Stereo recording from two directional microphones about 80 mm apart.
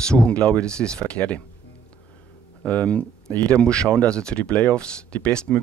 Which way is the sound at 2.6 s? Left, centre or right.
Centre.